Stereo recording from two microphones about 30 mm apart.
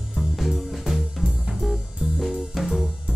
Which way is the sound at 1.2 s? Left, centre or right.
Right.